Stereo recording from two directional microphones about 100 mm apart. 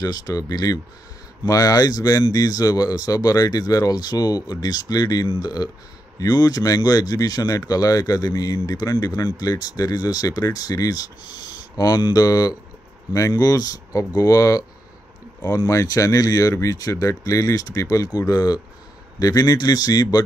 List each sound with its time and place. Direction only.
0.0 s speech: 40° left (ahead or behind)